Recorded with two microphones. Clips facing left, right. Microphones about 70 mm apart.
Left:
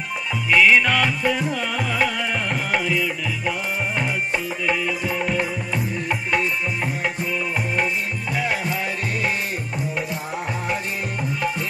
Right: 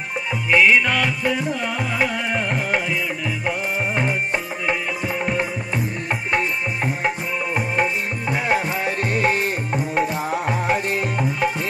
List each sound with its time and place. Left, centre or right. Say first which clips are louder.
0.5 s music: even; centre
0.7 s music: even; centre
1.5 s music: even; right